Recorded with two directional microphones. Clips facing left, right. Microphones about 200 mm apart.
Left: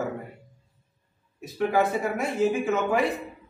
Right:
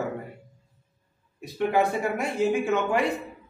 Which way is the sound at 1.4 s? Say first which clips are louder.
Even; centre (ahead or behind).